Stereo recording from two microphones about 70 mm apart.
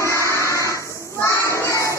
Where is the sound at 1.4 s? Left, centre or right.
Left.